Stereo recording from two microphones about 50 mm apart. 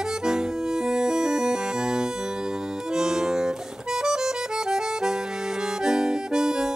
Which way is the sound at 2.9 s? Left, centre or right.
Centre.